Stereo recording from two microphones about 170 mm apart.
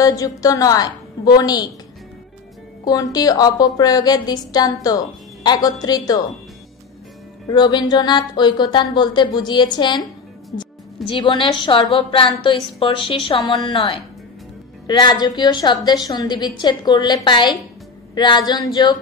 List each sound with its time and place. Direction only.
0.0 s a woman's voice: 20° left (ahead or behind)
2.8 s a woman's voice: 20° left (ahead or behind)
7.5 s a woman's voice: 25° left (ahead or behind)
11.1 s a woman's voice: 30° left (ahead or behind)